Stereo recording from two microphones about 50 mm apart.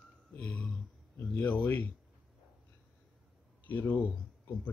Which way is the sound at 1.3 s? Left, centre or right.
Left.